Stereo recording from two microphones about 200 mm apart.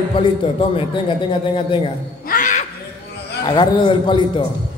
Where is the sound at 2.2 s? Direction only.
40° left (ahead or behind).